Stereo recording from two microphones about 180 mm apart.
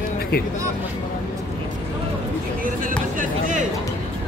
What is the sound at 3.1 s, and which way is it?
Speech, 45° right (ahead or behind).